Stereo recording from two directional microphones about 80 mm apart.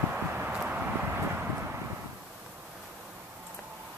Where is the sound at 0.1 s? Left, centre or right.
Centre.